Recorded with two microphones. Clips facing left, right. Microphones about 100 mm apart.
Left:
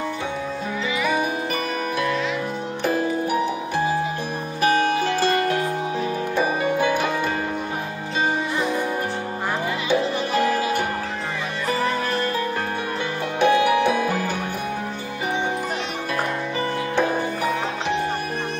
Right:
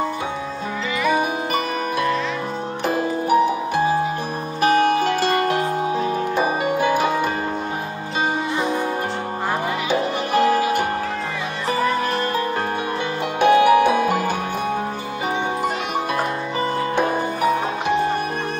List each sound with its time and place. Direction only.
4.6 s music: 55° right (ahead or behind)
9.9 s music: 50° right (ahead or behind)
13.4 s music: 50° right (ahead or behind)